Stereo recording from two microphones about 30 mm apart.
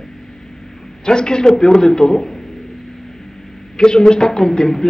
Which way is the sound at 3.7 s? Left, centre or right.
Left.